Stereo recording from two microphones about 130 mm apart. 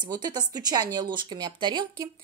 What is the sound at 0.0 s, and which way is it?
Speech, 35° right (ahead or behind).